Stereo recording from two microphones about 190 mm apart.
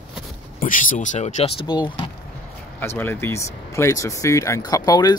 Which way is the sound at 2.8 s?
10° left (ahead or behind).